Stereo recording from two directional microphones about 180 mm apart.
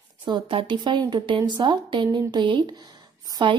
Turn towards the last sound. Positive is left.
turn(degrees=-25)  # may be behind; listen again after turning